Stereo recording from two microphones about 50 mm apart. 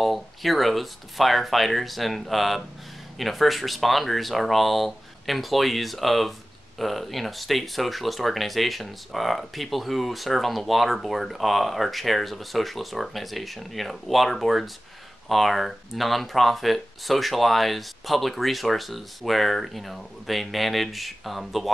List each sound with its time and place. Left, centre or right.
0.0 s speech: centre